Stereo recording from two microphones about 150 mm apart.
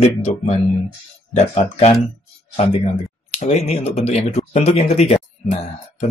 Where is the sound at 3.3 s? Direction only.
50° left (ahead or behind).